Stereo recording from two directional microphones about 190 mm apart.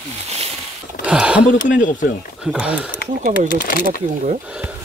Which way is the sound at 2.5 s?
5° right (ahead or behind).